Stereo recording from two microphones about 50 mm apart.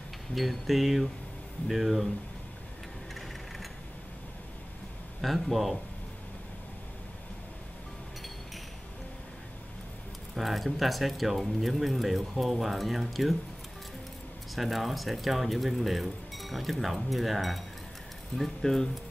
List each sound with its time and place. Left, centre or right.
0.3 s speech: centre
5.2 s speech: centre
10.3 s speech: centre
14.5 s speech: centre